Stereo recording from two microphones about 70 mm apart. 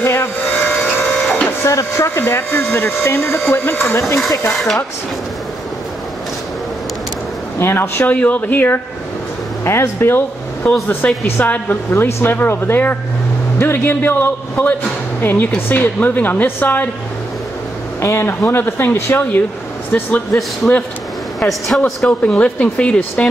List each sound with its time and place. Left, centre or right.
0.0 s a sound: left
0.7 s printer: centre
1.6 s speech: left
4.5 s speech: centre
7.5 s a woman's voice: left
18.0 s speech: left
19.9 s a woman's voice: centre
21.4 s speech: centre
22.2 s a woman's voice: centre